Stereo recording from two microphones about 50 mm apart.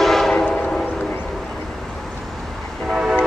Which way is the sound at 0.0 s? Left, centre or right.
Centre.